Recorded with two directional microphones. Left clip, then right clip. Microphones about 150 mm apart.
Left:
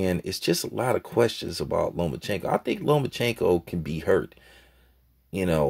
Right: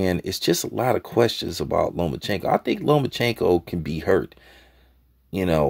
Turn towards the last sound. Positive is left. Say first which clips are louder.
# right 3 dB
turn(degrees=-30)  # may be behind; listen again after turning